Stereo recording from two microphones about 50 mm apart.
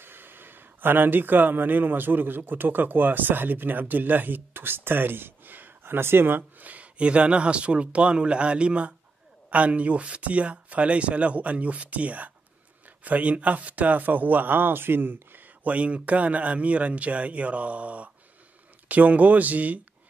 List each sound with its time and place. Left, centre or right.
0.0 s speech: right
5.9 s speech: right
6.7 s speech: right